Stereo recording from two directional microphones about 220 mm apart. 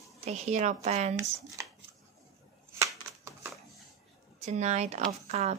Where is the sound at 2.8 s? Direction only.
10° right (ahead or behind).